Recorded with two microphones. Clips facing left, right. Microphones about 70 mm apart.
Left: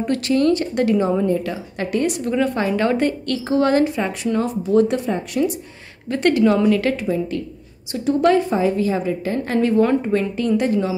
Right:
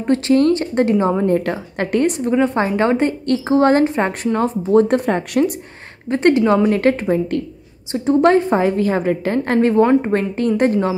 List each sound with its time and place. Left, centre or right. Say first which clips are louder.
0.0 s a woman's voice: right 4 dB; right
1.2 s a woman's voice: right 3 dB; right
2.1 s a woman's voice: right 4 dB; right
6.0 s a woman's voice: right 2 dB; right
7.9 s a woman's voice: right 3 dB; right